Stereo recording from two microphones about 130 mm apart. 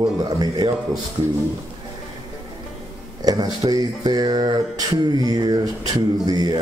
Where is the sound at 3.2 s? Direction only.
30° right (ahead or behind).